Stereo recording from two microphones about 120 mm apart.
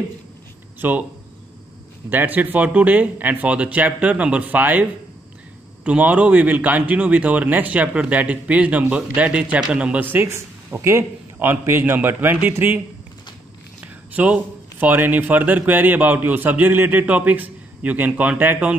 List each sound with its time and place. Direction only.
0.7 s speech: 15° right (ahead or behind)
2.0 s a man's voice: 15° right (ahead or behind)
5.9 s a man's voice: 10° right (ahead or behind)
10.1 s a man's voice: 20° right (ahead or behind)
14.1 s a man's voice: 10° right (ahead or behind)